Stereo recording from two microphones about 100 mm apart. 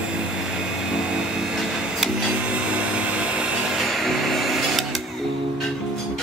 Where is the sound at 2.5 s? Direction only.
10° right (ahead or behind).